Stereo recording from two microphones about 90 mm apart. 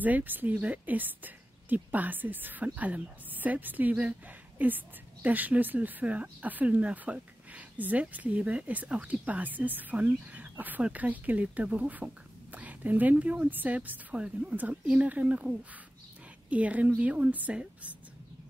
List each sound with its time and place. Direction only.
0.0 s a woman's voice: 20° right (ahead or behind)